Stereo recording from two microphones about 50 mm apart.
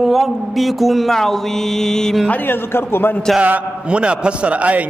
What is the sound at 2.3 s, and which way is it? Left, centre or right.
Speech, left.